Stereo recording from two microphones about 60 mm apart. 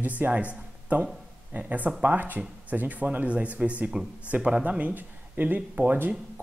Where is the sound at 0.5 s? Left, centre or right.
Right.